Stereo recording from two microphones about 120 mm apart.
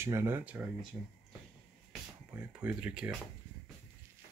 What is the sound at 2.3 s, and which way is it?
Speech, 10° right (ahead or behind).